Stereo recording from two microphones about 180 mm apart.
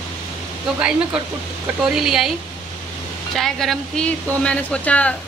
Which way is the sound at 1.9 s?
Centre (ahead or behind).